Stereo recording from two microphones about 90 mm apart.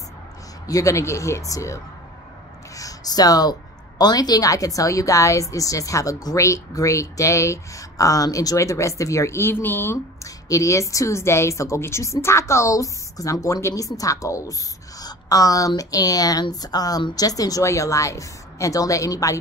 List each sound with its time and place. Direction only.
0.7 s a woman's voice: 35° left (ahead or behind)
2.7 s a sound: 40° left (ahead or behind)
4.0 s a woman's voice: 45° left (ahead or behind); by 9.9 s 25° left (ahead or behind)
10.2 s a woman's voice: 35° left (ahead or behind)